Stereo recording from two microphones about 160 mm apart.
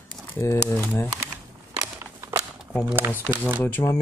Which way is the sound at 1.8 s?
20° right (ahead or behind).